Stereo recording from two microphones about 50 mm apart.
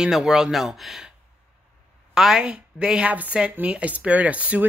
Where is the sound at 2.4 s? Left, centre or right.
Right.